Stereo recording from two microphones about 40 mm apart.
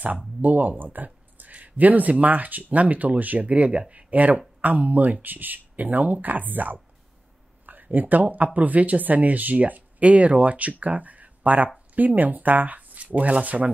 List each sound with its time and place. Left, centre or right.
0.4 s speech: right